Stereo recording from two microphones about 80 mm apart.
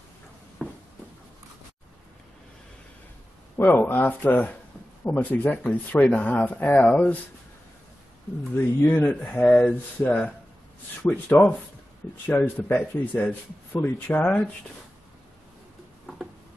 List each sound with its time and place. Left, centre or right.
0.6 s a sound: centre
3.5 s speech: left
8.8 s speech: left
9.3 s speech: centre
11.0 s speech: left